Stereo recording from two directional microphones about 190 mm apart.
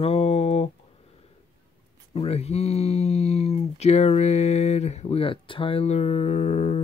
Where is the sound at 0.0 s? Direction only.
30° left (ahead or behind).